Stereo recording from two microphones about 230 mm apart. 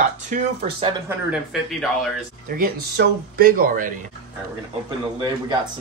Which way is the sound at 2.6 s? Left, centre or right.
Right.